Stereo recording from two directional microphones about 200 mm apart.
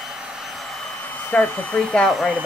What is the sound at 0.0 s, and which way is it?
Hair dryer, 5° right (ahead or behind).